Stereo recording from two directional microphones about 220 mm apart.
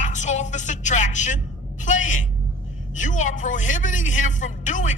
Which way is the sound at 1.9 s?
35° left (ahead or behind).